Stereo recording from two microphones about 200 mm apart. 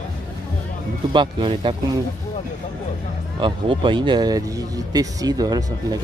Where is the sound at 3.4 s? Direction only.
25° right (ahead or behind).